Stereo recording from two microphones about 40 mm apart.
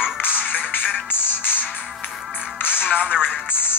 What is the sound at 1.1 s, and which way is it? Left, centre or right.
Music, left.